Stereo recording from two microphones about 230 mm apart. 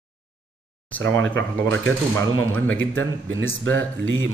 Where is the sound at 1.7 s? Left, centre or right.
Centre.